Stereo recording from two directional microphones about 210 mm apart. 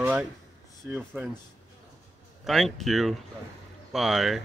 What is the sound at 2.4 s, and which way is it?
Speech, centre (ahead or behind).